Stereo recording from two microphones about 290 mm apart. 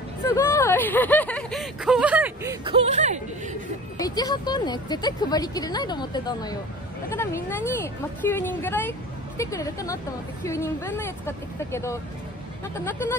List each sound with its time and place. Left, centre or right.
0.3 s speech: centre
2.6 s speech: centre
4.0 s a woman's voice: centre